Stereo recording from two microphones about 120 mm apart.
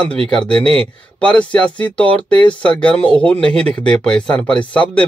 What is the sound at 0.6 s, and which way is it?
Speech, 55° right (ahead or behind).